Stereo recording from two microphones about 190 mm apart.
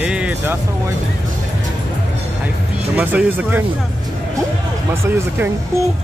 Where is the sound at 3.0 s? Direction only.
10° right (ahead or behind).